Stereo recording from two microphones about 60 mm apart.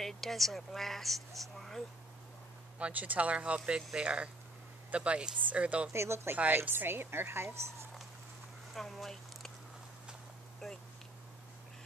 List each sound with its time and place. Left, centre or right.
0.0 s a woman's voice: centre
2.8 s speech: right
5.9 s speech: right
6.3 s speech: right
6.7 s a woman's voice: right
8.7 s speech: centre
10.6 s a woman's voice: centre